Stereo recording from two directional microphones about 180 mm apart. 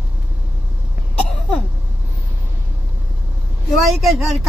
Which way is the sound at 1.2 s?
5° left (ahead or behind).